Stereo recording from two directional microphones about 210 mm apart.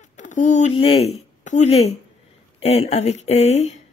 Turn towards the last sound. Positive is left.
turn(degrees=30)  # may be behind; listen again after turning